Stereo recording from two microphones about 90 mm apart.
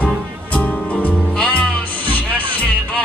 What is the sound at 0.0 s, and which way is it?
Music, 15° left (ahead or behind).